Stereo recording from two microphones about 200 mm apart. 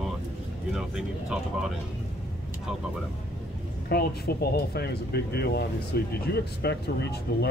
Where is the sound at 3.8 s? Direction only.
50° left (ahead or behind).